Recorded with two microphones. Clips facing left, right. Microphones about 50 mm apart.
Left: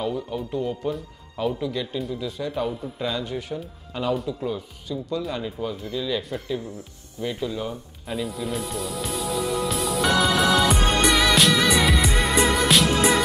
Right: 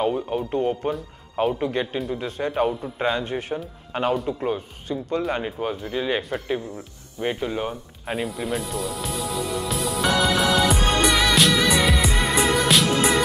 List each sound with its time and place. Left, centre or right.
0.0 s a man's voice: right
8.5 s music: centre